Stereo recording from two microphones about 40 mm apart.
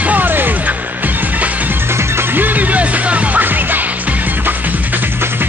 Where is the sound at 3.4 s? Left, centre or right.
Right.